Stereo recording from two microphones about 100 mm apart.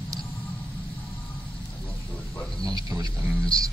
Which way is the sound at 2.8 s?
40° right (ahead or behind).